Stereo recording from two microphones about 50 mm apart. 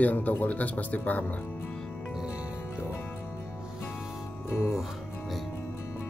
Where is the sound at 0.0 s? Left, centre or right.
Left.